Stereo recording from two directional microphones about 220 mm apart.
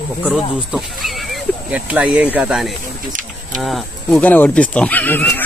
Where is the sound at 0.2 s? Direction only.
Centre (ahead or behind).